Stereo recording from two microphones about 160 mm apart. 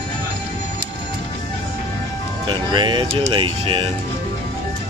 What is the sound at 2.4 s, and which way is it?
Speech, 30° right (ahead or behind).